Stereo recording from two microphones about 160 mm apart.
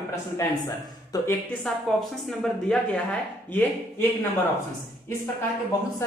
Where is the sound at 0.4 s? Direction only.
20° left (ahead or behind).